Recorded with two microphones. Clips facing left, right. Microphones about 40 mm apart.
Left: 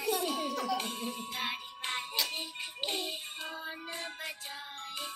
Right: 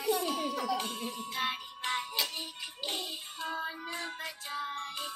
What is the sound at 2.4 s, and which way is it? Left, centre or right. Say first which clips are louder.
Music: left 2 dB; left.